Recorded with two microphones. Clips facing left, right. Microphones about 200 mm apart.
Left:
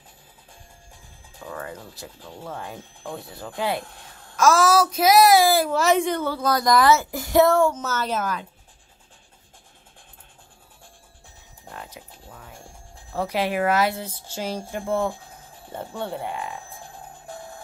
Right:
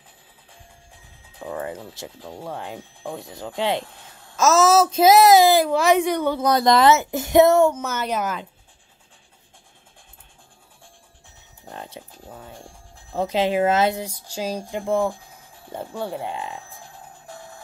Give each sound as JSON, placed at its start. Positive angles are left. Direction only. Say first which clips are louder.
{"t": 1.4, "sound": "a woman's voice", "louder": "right 5 dB", "side_deg": -20}
{"t": 11.7, "sound": "a sound", "louder": "right 3 dB", "side_deg": -30}
{"t": 13.1, "sound": "a woman's voice", "louder": "right 3 dB", "side_deg": -20}
{"t": 16.2, "sound": "a woman's voice", "louder": "right 1 dB", "side_deg": -25}